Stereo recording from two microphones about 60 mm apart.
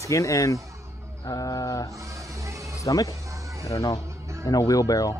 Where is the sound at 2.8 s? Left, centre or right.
Left.